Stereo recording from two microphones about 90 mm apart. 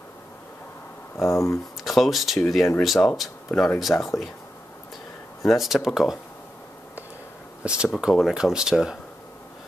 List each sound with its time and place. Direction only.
1.2 s speech: 35° left (ahead or behind)
1.9 s speech: centre (ahead or behind)
5.4 s speech: centre (ahead or behind)
7.6 s speech: 10° right (ahead or behind)